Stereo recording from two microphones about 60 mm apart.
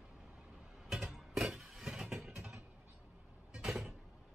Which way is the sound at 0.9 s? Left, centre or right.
Centre.